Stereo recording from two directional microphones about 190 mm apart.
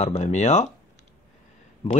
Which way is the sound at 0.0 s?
35° left (ahead or behind).